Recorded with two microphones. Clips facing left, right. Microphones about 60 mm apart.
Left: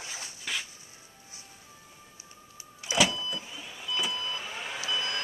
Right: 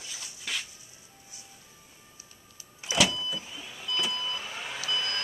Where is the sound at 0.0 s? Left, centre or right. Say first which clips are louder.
Left 3 dB; left.